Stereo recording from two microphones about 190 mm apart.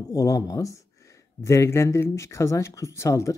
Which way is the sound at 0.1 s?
15° left (ahead or behind).